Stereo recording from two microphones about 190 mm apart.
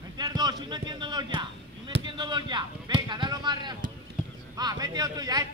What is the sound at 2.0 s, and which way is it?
Speech, 25° right (ahead or behind).